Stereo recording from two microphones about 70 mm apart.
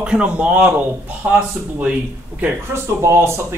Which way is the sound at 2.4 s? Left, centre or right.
Right.